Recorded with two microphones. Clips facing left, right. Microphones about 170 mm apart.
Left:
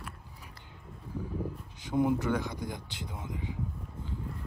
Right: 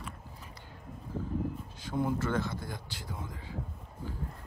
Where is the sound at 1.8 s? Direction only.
15° left (ahead or behind).